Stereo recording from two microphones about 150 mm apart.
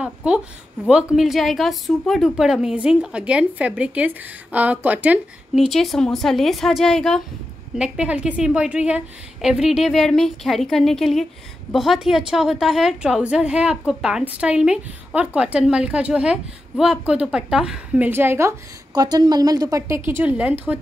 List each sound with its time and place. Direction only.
0.0 s a woman's voice: 5° right (ahead or behind)
5.7 s a woman's voice: centre (ahead or behind); by 18.5 s 15° right (ahead or behind)
18.9 s a woman's voice: 25° right (ahead or behind); by 20.5 s 10° right (ahead or behind)